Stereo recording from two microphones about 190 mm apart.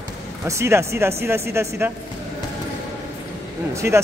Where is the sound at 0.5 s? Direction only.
15° right (ahead or behind).